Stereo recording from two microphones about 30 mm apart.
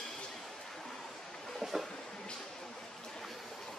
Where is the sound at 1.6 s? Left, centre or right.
Centre.